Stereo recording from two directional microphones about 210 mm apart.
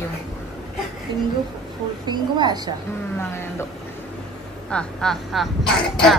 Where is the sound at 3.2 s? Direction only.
10° left (ahead or behind).